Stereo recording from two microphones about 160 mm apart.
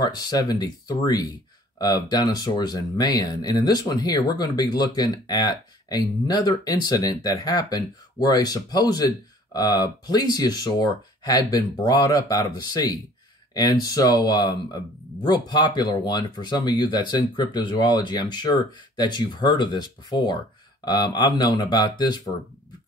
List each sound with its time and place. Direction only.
0.0 s speech: 25° left (ahead or behind)